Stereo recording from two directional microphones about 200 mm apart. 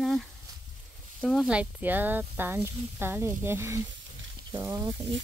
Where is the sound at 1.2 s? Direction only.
5° right (ahead or behind).